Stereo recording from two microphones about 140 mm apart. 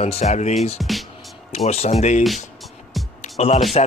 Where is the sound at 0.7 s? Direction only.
Centre (ahead or behind).